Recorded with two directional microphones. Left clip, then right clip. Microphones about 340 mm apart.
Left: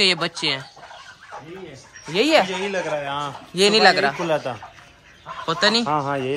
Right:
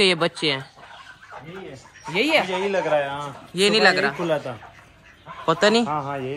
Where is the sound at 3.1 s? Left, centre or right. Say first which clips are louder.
Left 3 dB; centre.